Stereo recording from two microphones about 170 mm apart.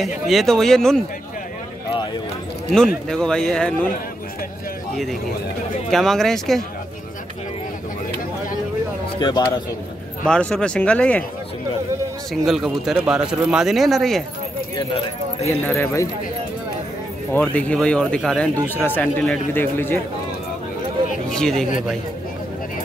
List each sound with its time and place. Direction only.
0.0 s speech: centre (ahead or behind)
3.1 s speech: 5° left (ahead or behind)
5.9 s speech: centre (ahead or behind)
9.2 s speech: 25° left (ahead or behind)
10.2 s a man's voice: 5° left (ahead or behind)
12.4 s speech: centre (ahead or behind)
15.4 s a man's voice: 15° left (ahead or behind)
17.3 s a man's voice: 10° left (ahead or behind)
21.3 s speech: 5° left (ahead or behind)